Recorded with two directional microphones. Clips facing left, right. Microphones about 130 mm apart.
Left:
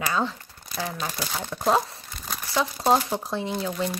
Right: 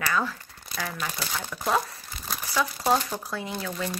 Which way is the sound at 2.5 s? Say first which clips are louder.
Left 3 dB; 25° left (ahead or behind).